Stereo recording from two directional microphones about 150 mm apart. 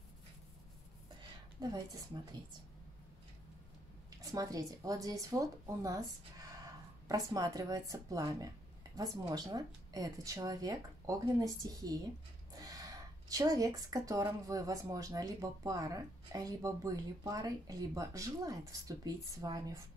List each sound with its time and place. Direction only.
1.6 s speech: 30° right (ahead or behind)
4.3 s speech: 25° right (ahead or behind)